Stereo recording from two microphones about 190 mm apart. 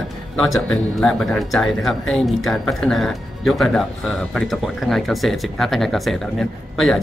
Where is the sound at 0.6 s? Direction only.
5° left (ahead or behind).